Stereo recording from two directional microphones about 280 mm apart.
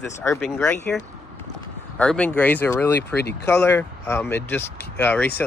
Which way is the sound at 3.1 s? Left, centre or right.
Left.